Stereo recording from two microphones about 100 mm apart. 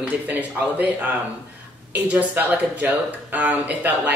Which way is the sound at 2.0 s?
15° right (ahead or behind).